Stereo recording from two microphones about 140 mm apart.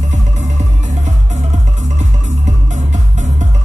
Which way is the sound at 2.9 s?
55° right (ahead or behind).